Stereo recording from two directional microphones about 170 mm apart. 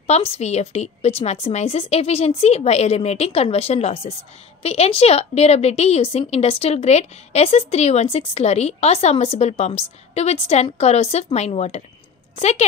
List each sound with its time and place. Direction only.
0.0 s a woman's voice: 40° left (ahead or behind)